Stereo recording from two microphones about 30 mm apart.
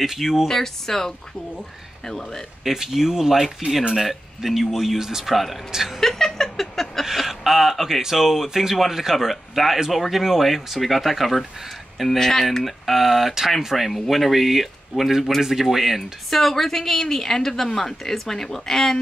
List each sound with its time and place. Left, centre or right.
0.0 s speech: centre
0.5 s a woman's voice: centre
2.6 s speech: centre
5.2 s speech: centre
5.9 s a sound: centre
7.2 s speech: centre
8.0 s speech: centre
12.2 s a woman's voice: centre
12.6 s speech: centre
13.8 s speech: centre
16.3 s a woman's voice: centre